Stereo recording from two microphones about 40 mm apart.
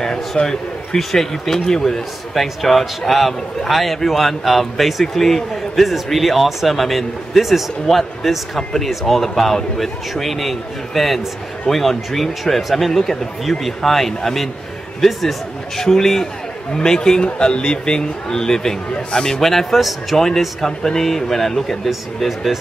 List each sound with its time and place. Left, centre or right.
0.0 s a man's voice: centre
2.4 s speech: centre
19.4 s speech: centre
20.2 s speech: centre